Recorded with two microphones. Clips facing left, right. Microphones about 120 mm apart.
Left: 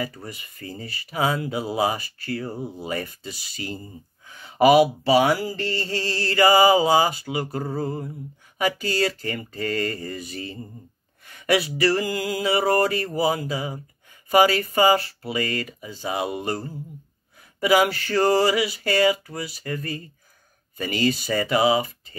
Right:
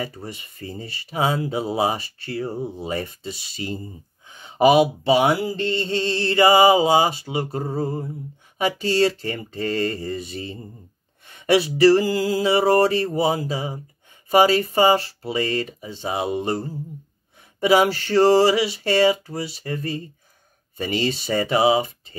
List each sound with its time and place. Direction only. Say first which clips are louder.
0.0 s mantra: right 1 dB; 30° right (ahead or behind)